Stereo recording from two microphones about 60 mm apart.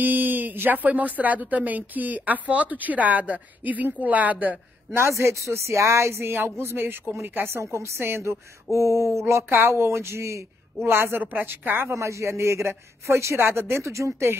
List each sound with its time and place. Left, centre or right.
0.0 s speech: right
4.9 s speech: right
10.8 s a woman's voice: right
11.9 s speech: right